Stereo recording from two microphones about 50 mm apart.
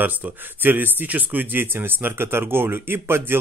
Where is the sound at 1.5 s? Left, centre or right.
Right.